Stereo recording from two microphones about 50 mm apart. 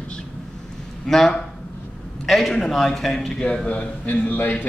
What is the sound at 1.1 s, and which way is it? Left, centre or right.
A man's voice, centre.